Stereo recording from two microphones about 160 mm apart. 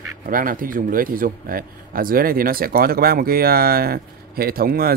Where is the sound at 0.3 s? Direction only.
60° right (ahead or behind).